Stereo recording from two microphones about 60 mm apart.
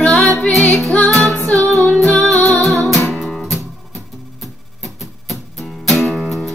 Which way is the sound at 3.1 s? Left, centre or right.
Centre.